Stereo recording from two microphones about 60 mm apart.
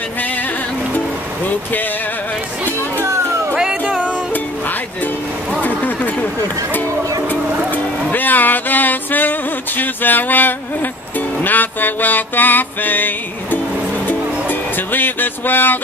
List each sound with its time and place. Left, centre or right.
3.1 s music: right
4.3 s music: left
5.6 s a sound: left
7.7 s music: left